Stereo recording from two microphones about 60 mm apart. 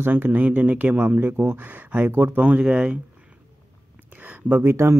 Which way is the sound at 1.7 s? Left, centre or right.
Right.